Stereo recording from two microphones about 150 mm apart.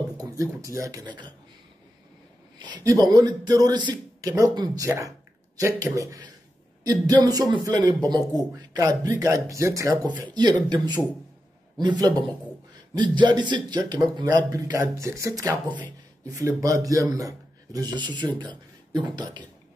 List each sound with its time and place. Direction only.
0.2 s speech: 20° right (ahead or behind)
2.6 s speech: 25° right (ahead or behind)
11.8 s speech: 30° right (ahead or behind)